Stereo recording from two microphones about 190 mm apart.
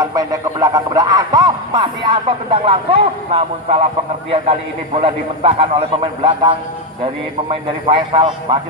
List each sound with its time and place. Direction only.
0.0 s speech: 20° right (ahead or behind)